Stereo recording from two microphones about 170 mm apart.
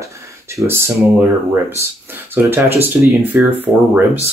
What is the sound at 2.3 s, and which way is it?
Speech, 15° right (ahead or behind).